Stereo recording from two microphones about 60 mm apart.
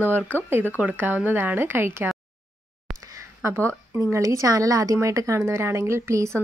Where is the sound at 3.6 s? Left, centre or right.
Right.